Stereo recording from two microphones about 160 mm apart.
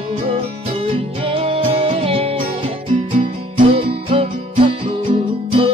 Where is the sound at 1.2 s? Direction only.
35° right (ahead or behind).